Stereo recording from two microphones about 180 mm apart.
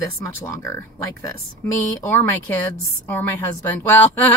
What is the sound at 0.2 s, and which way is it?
Speech, 15° left (ahead or behind).